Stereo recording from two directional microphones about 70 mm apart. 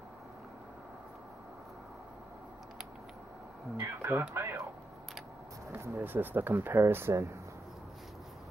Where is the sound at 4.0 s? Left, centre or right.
Right.